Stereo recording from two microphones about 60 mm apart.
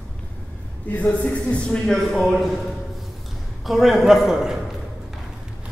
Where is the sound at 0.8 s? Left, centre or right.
Left; by 2.6 s centre.